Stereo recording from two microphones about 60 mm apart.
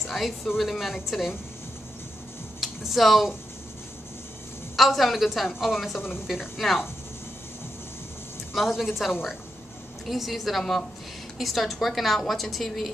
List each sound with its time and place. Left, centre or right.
0.0 s a sound: centre
0.6 s a woman's voice: centre
2.6 s speech: centre
4.7 s a woman's voice: centre
8.5 s a woman's voice: centre